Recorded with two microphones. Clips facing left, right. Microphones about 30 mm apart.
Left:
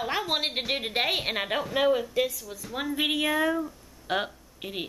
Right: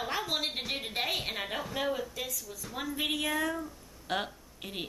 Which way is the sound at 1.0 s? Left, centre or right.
Left.